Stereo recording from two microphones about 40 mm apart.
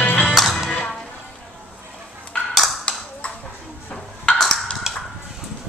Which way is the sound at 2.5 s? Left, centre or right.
Centre.